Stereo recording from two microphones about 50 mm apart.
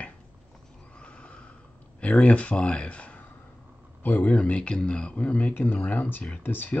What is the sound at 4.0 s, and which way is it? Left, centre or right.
Speech, left.